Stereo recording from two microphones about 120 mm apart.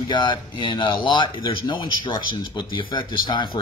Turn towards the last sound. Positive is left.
turn(degrees=40)  # may be behind; listen again after turning